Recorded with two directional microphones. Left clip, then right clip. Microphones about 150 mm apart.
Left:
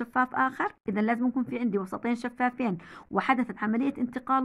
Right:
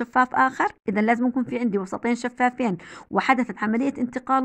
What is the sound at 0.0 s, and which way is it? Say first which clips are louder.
Speech: right 7 dB; 40° right (ahead or behind).